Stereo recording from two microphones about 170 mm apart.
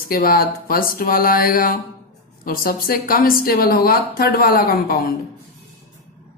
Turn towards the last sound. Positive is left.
turn(degrees=60)  # may be behind; listen again after turning